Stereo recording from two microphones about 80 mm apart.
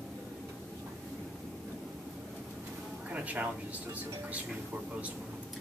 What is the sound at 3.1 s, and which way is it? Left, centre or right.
Speech, centre.